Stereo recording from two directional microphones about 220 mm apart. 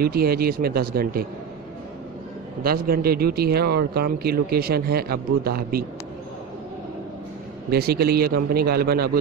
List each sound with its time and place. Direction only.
0.0 s a man's voice: 45° right (ahead or behind)
2.6 s a man's voice: 45° right (ahead or behind)
7.7 s a man's voice: 45° right (ahead or behind)